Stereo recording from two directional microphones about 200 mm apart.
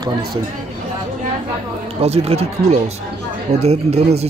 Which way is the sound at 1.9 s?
30° right (ahead or behind).